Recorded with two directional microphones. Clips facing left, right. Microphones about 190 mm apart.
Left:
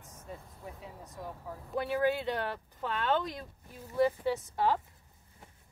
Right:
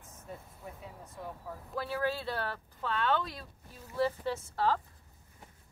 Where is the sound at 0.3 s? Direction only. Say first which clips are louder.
Left 1 dB; centre (ahead or behind).